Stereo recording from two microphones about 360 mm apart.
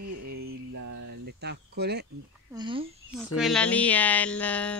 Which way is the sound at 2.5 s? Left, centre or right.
Centre.